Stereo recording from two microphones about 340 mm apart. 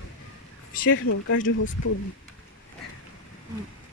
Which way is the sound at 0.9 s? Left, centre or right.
Left.